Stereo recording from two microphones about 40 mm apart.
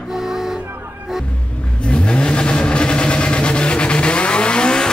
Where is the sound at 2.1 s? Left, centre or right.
Left.